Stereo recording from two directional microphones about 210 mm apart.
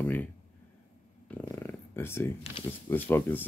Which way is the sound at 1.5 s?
10° left (ahead or behind).